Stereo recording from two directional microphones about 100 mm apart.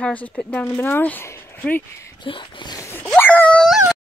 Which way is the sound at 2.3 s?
55° left (ahead or behind).